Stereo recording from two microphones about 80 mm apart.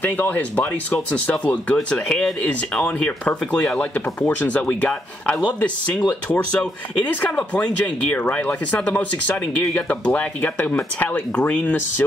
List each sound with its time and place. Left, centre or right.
0.0 s speech: left